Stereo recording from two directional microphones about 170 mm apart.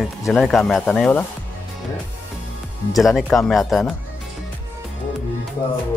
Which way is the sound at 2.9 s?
Centre (ahead or behind).